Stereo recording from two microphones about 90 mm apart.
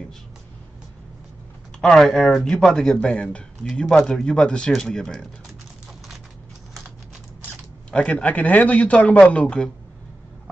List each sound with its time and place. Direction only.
1.8 s a man's voice: 5° left (ahead or behind)
7.9 s a man's voice: 15° left (ahead or behind)